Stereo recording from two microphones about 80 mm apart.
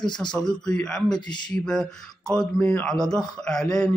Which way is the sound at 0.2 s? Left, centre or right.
Centre.